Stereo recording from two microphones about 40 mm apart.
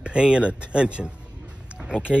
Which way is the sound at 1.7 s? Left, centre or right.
Centre.